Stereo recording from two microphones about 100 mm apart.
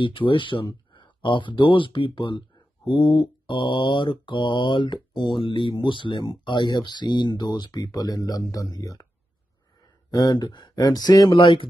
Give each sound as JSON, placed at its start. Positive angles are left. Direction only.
{"t": 0.0, "sound": "speech", "side_deg": 55}
{"t": 2.9, "sound": "mantra", "side_deg": 55}
{"t": 10.1, "sound": "mantra", "side_deg": 40}
{"t": 11.3, "sound": "speech", "side_deg": 60}